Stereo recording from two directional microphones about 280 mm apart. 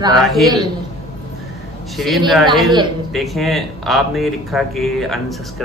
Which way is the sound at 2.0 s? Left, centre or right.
Centre.